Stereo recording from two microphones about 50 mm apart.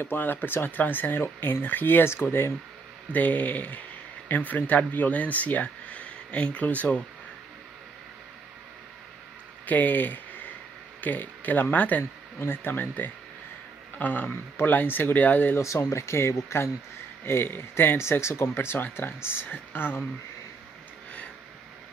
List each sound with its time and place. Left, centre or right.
0.0 s speech: left
3.1 s speech: left
9.7 s speech: left
12.0 s speech: left
12.6 s speech: left
15.6 s speech: left
17.2 s speech: left
18.8 s speech: left